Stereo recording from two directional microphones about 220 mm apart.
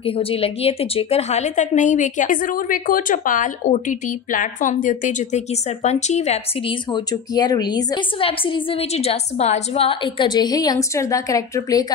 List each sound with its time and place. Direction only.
0.0 s a woman's voice: 25° left (ahead or behind)
6.9 s a woman's voice: 20° left (ahead or behind)